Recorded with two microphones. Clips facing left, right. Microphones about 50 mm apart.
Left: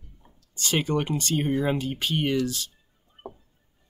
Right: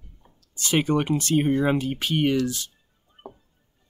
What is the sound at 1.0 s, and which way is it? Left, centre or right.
Speech, centre.